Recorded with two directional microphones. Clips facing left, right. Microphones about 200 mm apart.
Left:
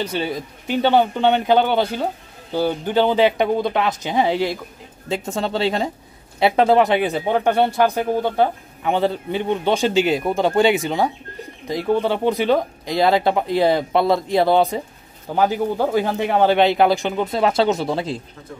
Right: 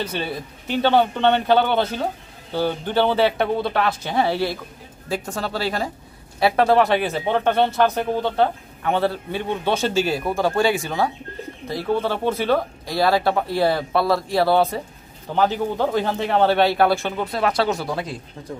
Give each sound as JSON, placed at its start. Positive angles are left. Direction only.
{"t": 0.0, "sound": "speech", "side_deg": 10}